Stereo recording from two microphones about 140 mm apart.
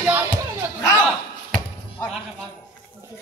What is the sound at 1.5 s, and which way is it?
Basketball bounce, 5° left (ahead or behind).